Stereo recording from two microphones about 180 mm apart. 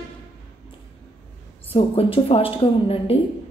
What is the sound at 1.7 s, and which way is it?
A woman's voice, 30° left (ahead or behind).